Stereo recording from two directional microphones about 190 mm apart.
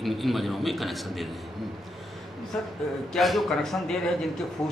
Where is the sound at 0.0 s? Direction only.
Centre (ahead or behind).